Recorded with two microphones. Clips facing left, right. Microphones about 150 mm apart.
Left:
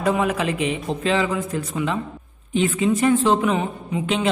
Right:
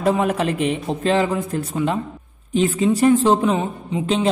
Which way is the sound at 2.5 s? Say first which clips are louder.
Right 2 dB; 40° right (ahead or behind).